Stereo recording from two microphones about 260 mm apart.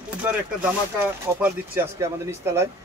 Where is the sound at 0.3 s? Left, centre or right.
Centre.